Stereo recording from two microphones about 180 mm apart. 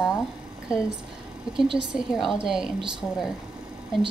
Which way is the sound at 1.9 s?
5° right (ahead or behind).